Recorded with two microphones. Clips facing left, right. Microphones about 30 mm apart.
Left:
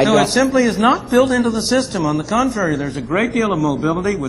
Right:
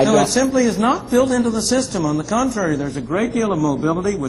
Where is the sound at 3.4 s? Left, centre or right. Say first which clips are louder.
Left 1 dB; left.